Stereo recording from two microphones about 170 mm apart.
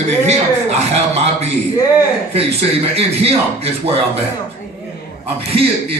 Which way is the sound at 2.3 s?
35° right (ahead or behind).